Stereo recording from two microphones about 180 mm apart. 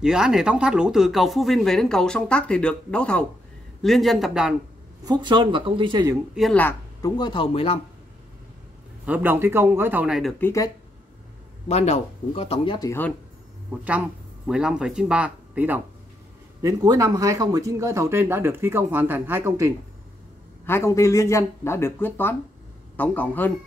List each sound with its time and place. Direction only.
0.0 s speech: 5° right (ahead or behind)
5.0 s speech: 25° right (ahead or behind)
6.3 s speech: centre (ahead or behind)
6.6 s speech: 20° left (ahead or behind)
9.0 s speech: 10° right (ahead or behind)
10.4 s speech: 15° left (ahead or behind)
11.6 s speech: 35° left (ahead or behind)
13.7 s speech: 10° right (ahead or behind)
16.6 s speech: 20° right (ahead or behind)
20.6 s speech: 15° left (ahead or behind)